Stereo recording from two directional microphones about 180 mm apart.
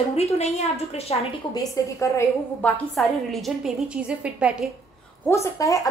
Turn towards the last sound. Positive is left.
turn(degrees=15)  # may be behind; listen again after turning